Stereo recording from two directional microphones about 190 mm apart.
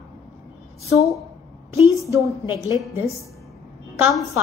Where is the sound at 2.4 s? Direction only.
20° left (ahead or behind).